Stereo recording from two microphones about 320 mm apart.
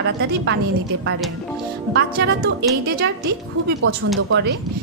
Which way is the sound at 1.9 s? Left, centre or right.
Right.